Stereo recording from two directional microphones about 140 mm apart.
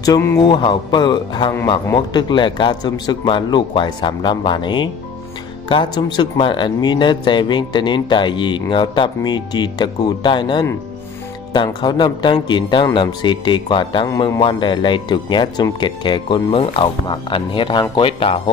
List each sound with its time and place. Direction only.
0.0 s speech: 20° left (ahead or behind)
0.5 s speech: 35° left (ahead or behind)
14.0 s speech: 25° left (ahead or behind)
14.4 s speech: 35° left (ahead or behind)